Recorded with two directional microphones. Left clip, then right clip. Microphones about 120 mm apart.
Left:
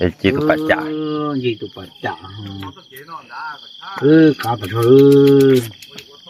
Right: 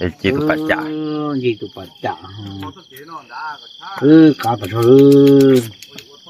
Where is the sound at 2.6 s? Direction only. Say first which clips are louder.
Right 1 dB; 60° right (ahead or behind).